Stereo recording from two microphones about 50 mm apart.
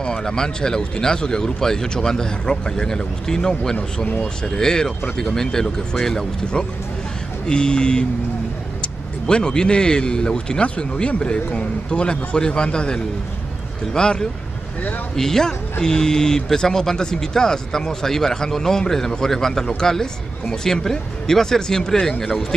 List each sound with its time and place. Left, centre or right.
0.0 s speech: centre
9.3 s speech: centre